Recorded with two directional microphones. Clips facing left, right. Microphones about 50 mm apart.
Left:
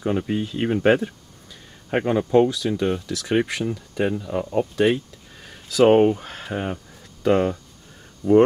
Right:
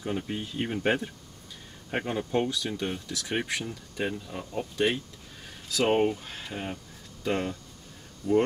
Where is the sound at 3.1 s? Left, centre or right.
Left.